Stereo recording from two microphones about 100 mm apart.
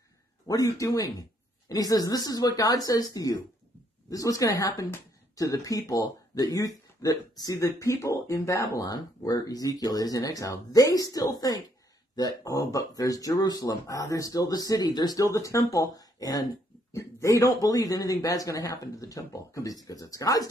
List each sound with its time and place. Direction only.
0.5 s speech: 35° left (ahead or behind)